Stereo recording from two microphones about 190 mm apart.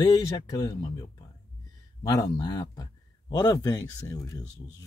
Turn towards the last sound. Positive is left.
turn(degrees=20)  # may be behind; listen again after turning